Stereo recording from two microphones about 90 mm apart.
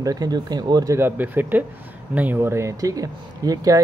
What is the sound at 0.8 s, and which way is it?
Speech, 25° right (ahead or behind).